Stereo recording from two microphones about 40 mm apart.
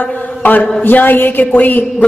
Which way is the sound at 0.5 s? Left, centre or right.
Left.